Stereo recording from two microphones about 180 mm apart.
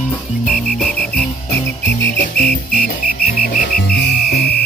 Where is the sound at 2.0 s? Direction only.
60° left (ahead or behind).